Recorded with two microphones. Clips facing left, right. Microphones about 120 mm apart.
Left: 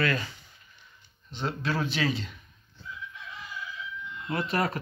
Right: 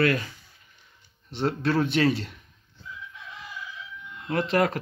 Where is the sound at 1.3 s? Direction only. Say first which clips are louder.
Right 6 dB; 55° right (ahead or behind).